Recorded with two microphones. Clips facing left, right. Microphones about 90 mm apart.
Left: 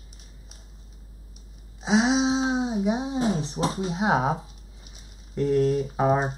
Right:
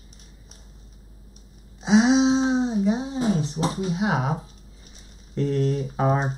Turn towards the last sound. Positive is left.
turn(degrees=5)  # may be behind; listen again after turning